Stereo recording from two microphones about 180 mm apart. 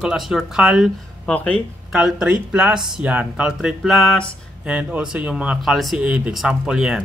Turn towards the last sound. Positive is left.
turn(degrees=-5)  # may be behind; listen again after turning